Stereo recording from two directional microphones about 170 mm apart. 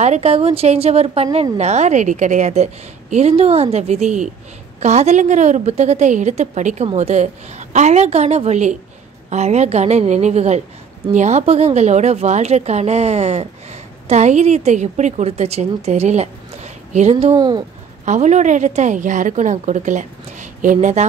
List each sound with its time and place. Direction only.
0.0 s a woman's voice: 40° right (ahead or behind)
17.4 s speech: 25° right (ahead or behind)
18.0 s a woman's voice: 45° right (ahead or behind)